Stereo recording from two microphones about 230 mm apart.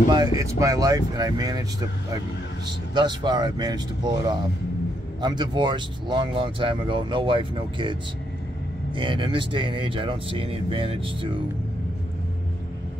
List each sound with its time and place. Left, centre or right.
0.4 s speech: centre
2.9 s speech: centre